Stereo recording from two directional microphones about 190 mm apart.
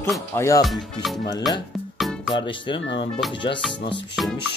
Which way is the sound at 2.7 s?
70° left (ahead or behind).